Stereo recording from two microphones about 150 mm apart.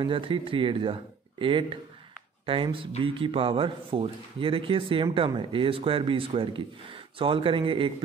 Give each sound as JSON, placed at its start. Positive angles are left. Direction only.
{"t": 0.0, "sound": "speech", "side_deg": -35}